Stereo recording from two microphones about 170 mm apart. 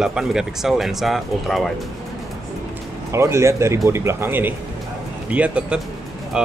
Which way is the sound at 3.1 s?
15° right (ahead or behind).